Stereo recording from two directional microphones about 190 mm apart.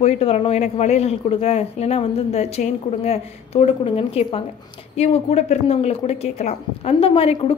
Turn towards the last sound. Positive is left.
turn(degrees=30)  # may be behind; listen again after turning